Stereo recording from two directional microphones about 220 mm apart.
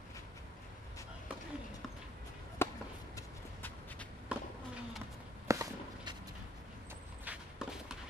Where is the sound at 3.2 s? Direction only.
10° left (ahead or behind).